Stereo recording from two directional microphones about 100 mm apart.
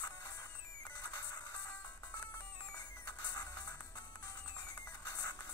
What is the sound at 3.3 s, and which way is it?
Music, 35° left (ahead or behind).